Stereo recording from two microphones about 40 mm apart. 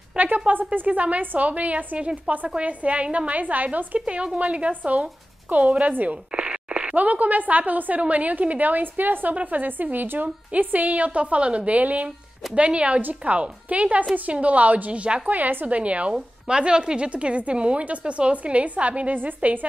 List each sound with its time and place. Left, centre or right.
0.2 s a sound: right
0.7 s a woman's voice: right
2.0 s a woman's voice: right
4.0 s speech: right
6.3 s a sound: right
7.0 s a woman's voice: right
9.3 s a woman's voice: right
15.2 s a woman's voice: right
16.1 s speech: right
19.1 s a woman's voice: right